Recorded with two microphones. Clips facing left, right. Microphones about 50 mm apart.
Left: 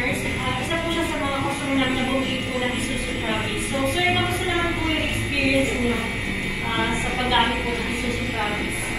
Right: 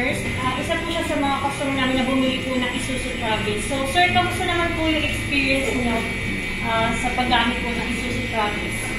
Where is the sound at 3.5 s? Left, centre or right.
Centre.